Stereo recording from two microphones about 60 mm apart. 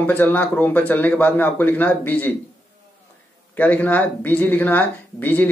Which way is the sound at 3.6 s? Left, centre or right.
Left.